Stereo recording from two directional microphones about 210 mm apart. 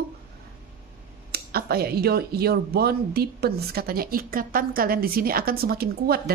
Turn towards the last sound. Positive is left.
turn(degrees=-45)  # may be behind; listen again after turning